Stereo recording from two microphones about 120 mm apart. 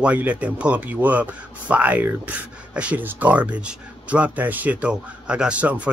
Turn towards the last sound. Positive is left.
turn(degrees=-10)  # may be behind; listen again after turning